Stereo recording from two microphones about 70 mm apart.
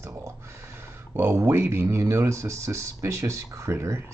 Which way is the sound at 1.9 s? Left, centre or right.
Right.